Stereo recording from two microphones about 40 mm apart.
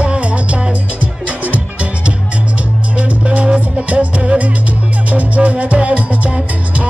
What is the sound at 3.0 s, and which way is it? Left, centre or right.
Music, right.